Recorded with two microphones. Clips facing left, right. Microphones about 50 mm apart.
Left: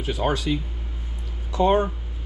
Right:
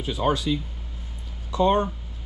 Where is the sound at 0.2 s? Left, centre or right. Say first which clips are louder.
Right 1 dB; centre.